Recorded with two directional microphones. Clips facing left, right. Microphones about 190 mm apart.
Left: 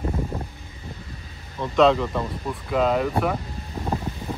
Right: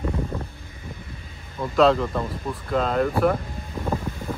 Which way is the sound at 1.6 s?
Centre (ahead or behind).